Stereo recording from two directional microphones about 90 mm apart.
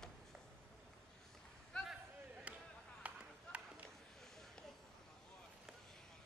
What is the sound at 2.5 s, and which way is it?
Chop, 15° right (ahead or behind).